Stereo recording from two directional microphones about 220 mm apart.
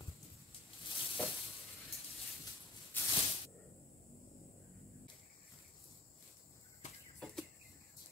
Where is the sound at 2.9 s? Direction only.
10° left (ahead or behind).